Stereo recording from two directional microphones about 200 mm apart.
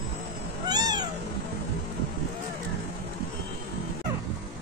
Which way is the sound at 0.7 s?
20° right (ahead or behind).